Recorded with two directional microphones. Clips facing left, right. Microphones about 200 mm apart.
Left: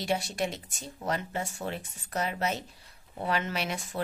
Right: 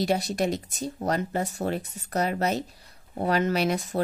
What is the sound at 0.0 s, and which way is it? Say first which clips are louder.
A woman's voice: right 5 dB; 40° right (ahead or behind).